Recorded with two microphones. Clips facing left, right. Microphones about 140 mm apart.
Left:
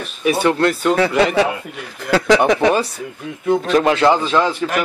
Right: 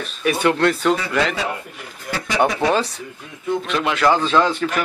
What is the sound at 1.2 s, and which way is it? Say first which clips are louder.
Speech: left 7 dB; 65° left (ahead or behind).